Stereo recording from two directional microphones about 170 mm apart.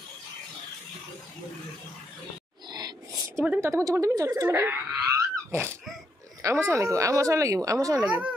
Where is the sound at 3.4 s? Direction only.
10° right (ahead or behind).